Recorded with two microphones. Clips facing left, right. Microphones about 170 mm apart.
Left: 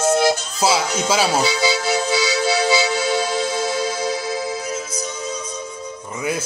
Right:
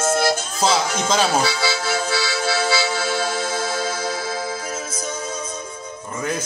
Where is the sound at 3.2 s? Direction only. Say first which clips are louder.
Left 2 dB; 50° right (ahead or behind).